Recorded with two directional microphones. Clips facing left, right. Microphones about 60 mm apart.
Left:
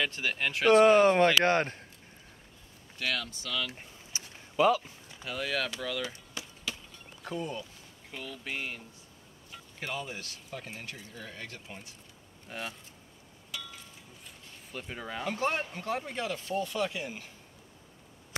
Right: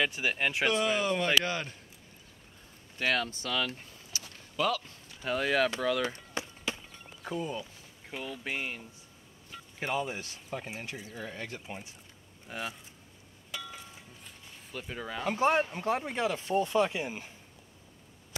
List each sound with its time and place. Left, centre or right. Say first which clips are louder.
0.0 s speech: right 2 dB; centre
0.7 s speech: left 11 dB; left
3.0 s speech: right 4 dB; right
4.1 s a sound: right 1 dB; centre
5.2 s speech: right 5 dB; right
7.2 s speech: right 1 dB; centre
8.1 s speech: right 2 dB; right
12.4 s speech: right 1 dB; centre
13.5 s a sound: right 2 dB; right
14.7 s speech: right 1 dB; centre
15.2 s speech: right 5 dB; centre